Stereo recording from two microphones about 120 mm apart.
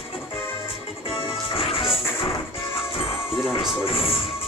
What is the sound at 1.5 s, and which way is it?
Music, 50° left (ahead or behind).